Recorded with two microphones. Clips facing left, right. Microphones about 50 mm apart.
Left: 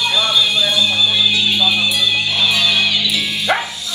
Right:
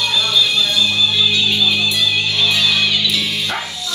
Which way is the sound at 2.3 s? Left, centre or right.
Centre.